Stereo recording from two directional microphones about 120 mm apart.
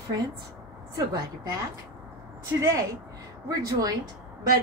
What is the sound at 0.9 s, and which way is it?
Speech, 30° right (ahead or behind).